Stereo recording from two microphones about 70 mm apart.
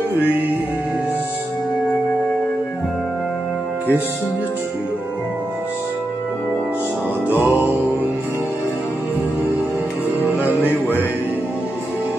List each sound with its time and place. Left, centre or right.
7.4 s music: right
10.6 s music: left